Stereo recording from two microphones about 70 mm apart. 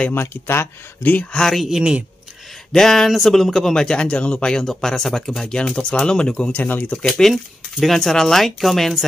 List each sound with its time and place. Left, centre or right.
0.1 s speech: left
1.3 s speech: centre
1.8 s speech: centre
2.7 s a man's voice: centre
6.5 s speech: left
7.8 s speech: centre